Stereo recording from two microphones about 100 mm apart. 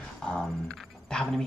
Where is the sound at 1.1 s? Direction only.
5° left (ahead or behind).